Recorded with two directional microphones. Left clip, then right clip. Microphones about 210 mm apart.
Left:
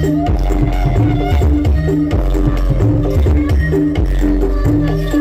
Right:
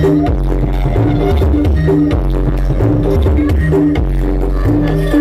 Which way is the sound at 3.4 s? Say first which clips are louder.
Right 2 dB; 40° right (ahead or behind).